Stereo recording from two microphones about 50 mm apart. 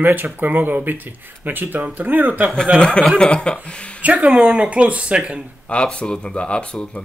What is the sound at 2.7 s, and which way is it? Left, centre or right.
Speech, left.